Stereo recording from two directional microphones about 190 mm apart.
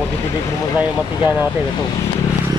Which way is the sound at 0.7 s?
10° right (ahead or behind).